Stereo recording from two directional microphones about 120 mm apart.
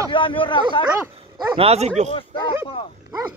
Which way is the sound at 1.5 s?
55° right (ahead or behind).